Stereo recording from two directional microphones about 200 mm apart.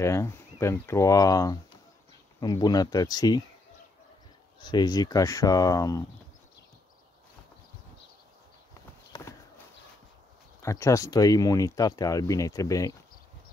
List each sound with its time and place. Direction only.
0.0 s speech: 15° left (ahead or behind)
4.6 s speech: 20° left (ahead or behind)
9.1 s clip-clop: 20° left (ahead or behind)
10.6 s speech: 15° left (ahead or behind)